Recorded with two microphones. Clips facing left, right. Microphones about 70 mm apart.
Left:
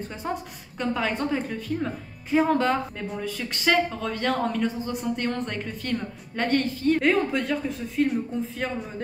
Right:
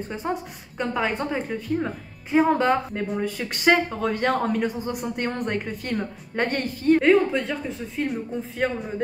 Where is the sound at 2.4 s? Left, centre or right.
Right.